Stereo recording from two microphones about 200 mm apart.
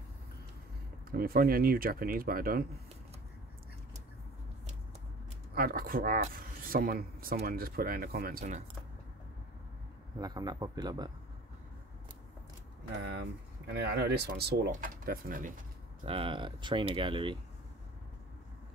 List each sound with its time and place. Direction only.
1.1 s speech: 50° right (ahead or behind)
5.5 s speech: 45° right (ahead or behind)
10.2 s speech: 20° right (ahead or behind)
13.7 s speech: 55° right (ahead or behind)
16.1 s speech: 25° right (ahead or behind)